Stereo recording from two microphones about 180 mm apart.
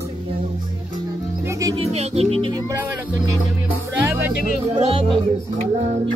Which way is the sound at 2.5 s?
15° right (ahead or behind).